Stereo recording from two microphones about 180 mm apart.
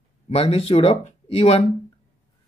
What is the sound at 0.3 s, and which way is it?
Speech, 35° left (ahead or behind).